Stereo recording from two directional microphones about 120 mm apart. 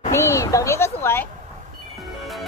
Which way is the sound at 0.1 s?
25° left (ahead or behind).